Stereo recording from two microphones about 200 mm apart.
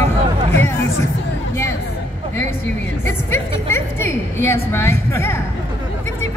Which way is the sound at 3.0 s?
10° left (ahead or behind).